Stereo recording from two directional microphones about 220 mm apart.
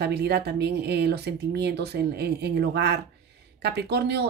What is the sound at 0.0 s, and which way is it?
Speech, 50° right (ahead or behind).